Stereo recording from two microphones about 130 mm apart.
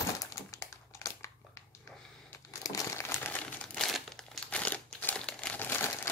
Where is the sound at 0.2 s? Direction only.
25° left (ahead or behind).